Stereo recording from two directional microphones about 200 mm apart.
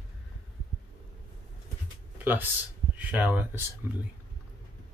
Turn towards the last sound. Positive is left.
turn(degrees=-10)  # may be behind; listen again after turning